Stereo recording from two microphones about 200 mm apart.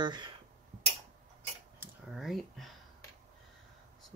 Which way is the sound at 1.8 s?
Centre (ahead or behind).